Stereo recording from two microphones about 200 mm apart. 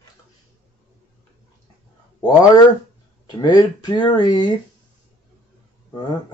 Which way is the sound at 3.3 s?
20° left (ahead or behind).